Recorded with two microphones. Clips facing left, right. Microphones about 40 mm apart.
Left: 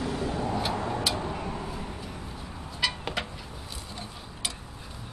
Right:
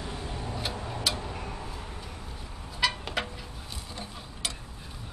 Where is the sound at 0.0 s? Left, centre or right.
Left.